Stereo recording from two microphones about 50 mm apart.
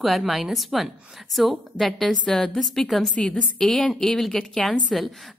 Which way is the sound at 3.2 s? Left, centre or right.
Centre.